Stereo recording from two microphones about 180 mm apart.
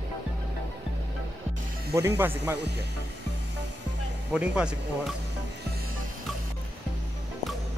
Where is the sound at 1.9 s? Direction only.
15° right (ahead or behind).